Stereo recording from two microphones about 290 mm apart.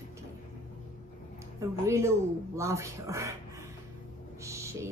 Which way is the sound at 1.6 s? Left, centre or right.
Centre.